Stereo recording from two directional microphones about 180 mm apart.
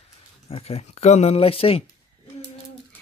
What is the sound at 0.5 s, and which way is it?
Speech, 35° left (ahead or behind).